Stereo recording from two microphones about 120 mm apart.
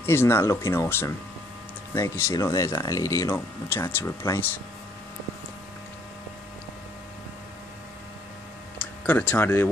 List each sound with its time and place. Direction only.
0.0 s speech: 20° left (ahead or behind)
9.0 s speech: 10° left (ahead or behind)